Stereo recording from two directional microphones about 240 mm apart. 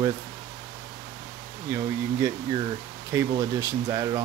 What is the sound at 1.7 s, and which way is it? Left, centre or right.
Speech, centre.